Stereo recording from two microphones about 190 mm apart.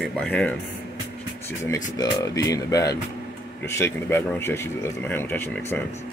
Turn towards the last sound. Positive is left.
turn(degrees=10)  # may be behind; listen again after turning